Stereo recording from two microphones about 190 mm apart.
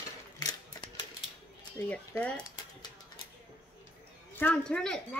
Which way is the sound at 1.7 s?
5° left (ahead or behind).